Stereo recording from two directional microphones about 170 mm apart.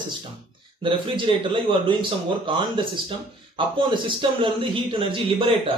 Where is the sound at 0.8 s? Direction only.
30° right (ahead or behind).